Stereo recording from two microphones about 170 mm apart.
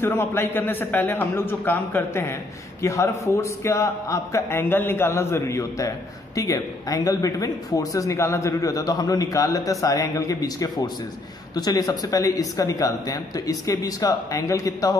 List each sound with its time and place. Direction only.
0.0 s a man's voice: 15° left (ahead or behind)